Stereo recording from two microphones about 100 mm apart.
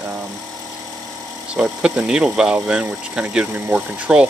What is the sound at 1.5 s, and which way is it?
Speech, 10° right (ahead or behind).